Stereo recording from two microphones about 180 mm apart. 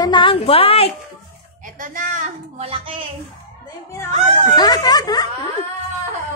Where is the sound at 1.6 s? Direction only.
50° right (ahead or behind); by 3.0 s 30° right (ahead or behind).